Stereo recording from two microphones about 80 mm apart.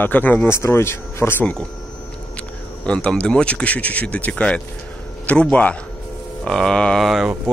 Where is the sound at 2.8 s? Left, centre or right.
Centre.